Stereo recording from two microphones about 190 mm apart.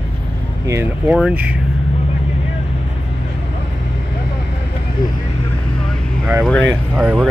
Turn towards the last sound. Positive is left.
turn(degrees=-5)  # may be behind; listen again after turning